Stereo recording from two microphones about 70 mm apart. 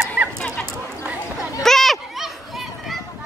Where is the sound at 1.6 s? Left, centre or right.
Centre.